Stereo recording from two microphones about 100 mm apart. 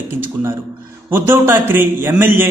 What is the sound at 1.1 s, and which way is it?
A man's voice, 25° right (ahead or behind).